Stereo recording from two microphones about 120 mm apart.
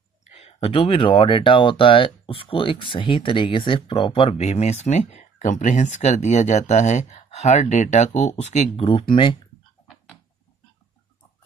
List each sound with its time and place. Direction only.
0.2 s speech: 65° left (ahead or behind)
8.8 s speech: 50° left (ahead or behind)